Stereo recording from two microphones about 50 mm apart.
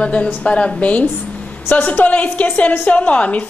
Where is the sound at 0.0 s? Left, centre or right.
Left.